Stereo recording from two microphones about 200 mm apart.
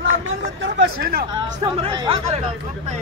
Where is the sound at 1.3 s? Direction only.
20° right (ahead or behind).